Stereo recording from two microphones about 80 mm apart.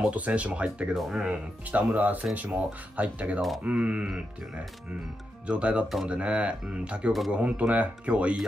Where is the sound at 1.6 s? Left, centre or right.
Centre.